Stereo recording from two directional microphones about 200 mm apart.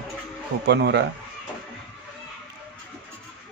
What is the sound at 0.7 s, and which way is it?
Speech, 55° right (ahead or behind).